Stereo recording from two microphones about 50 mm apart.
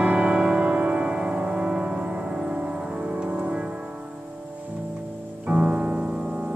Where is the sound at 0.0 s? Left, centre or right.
Right.